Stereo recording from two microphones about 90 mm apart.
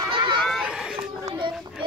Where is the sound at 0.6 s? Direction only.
5° right (ahead or behind).